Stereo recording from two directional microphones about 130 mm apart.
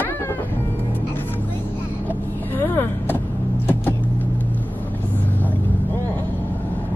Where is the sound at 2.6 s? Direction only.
15° left (ahead or behind).